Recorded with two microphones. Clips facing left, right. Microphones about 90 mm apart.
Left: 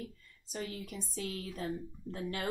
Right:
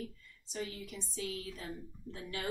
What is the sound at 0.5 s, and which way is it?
A woman's voice, 45° left (ahead or behind).